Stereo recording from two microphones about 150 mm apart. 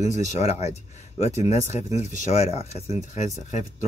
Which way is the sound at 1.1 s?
40° left (ahead or behind).